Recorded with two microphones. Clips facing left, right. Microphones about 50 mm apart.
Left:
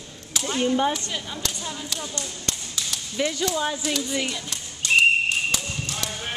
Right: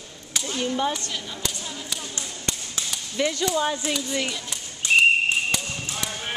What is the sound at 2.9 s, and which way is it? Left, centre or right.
Speech, centre.